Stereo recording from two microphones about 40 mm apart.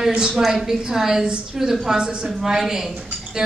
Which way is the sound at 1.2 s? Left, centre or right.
Right.